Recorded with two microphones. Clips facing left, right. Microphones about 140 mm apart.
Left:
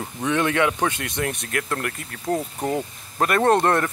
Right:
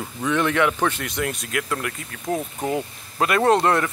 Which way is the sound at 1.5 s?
45° left (ahead or behind).